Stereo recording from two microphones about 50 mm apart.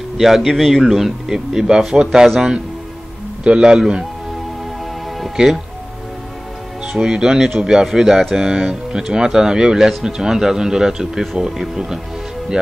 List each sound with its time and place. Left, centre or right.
0.2 s speech: centre
3.4 s speech: centre
5.2 s speech: centre
7.0 s speech: centre